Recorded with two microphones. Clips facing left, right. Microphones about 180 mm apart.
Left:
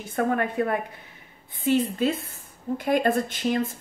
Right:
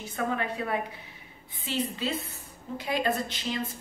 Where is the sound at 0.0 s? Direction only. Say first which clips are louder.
Left 6 dB; 50° left (ahead or behind).